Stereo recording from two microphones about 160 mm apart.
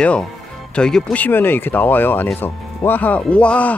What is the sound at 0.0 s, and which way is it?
Speech, 5° left (ahead or behind).